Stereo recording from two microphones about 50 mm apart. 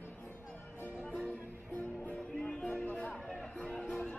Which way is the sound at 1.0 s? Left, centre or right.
Left.